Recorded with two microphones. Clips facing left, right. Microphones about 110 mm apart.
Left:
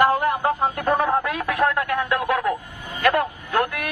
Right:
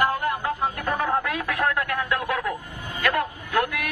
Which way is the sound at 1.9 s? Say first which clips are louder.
Left 4 dB; 35° left (ahead or behind).